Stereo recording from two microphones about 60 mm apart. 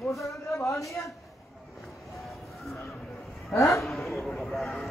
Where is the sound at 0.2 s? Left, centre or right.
Left.